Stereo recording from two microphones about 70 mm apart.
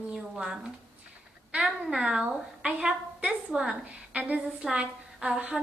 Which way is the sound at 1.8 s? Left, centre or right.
Centre.